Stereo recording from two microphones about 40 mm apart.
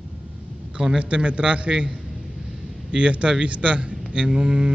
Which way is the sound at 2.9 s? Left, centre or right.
Right.